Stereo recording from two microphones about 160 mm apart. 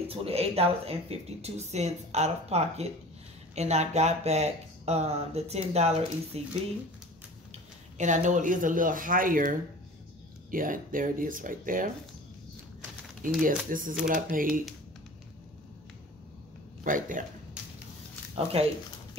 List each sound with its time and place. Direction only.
0.1 s speech: 40° right (ahead or behind)
8.0 s speech: 50° right (ahead or behind)
13.2 s speech: 55° right (ahead or behind)
16.8 s speech: 55° right (ahead or behind)
18.3 s speech: 40° right (ahead or behind)